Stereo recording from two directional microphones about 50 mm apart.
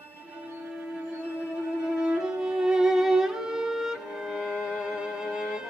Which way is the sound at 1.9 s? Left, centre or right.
Centre.